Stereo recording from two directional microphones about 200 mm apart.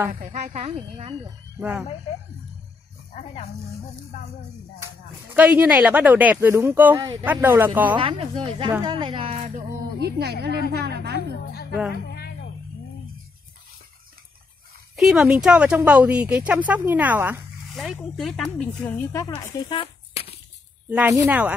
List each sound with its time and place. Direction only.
0.1 s speech: 40° right (ahead or behind)
1.6 s speech: 5° right (ahead or behind)
5.3 s speech: 5° right (ahead or behind)
7.9 s speech: 25° right (ahead or behind)
9.9 s speech: 55° right (ahead or behind)
11.1 s music: 50° left (ahead or behind)
15.0 s a woman's voice: 5° right (ahead or behind); by 20.3 s 30° left (ahead or behind)
21.1 s speech: 10° right (ahead or behind)